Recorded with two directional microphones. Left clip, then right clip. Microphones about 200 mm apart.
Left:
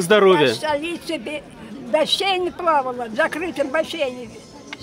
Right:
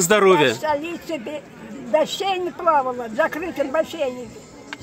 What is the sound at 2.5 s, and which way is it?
Speech, 25° left (ahead or behind).